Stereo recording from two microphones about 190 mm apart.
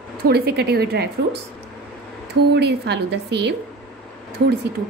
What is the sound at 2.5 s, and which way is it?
A woman's voice, 60° right (ahead or behind).